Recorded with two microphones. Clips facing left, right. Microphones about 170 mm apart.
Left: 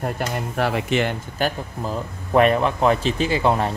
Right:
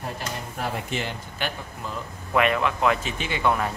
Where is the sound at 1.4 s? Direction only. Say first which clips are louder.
Left 8 dB; 35° left (ahead or behind).